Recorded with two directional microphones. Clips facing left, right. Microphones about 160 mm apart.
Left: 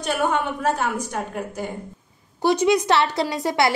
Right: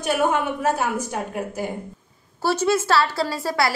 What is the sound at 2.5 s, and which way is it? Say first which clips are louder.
A woman's voice: left 2 dB; 15° left (ahead or behind).